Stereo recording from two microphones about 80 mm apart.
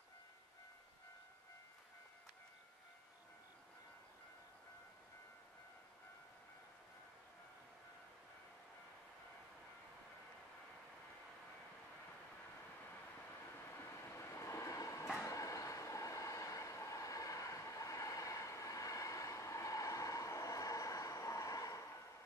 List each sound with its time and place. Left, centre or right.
13.7 s train: left